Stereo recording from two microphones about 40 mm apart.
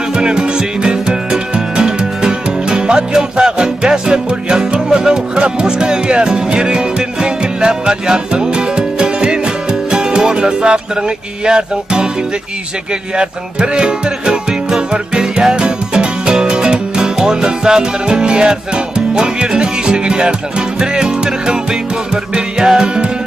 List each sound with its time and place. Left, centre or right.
0.1 s music: centre
13.1 s music: right